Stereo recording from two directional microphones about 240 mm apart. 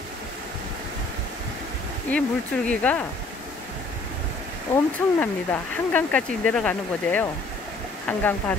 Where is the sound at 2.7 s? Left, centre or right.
Centre.